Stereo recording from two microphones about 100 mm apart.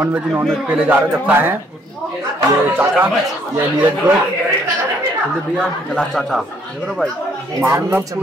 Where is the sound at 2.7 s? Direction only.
20° right (ahead or behind).